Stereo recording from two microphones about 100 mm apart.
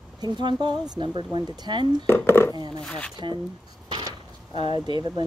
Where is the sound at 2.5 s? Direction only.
45° right (ahead or behind).